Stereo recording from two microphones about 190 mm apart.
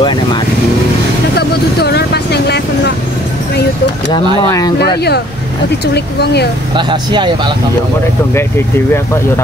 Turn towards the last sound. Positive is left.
turn(degrees=-25)  # may be behind; listen again after turning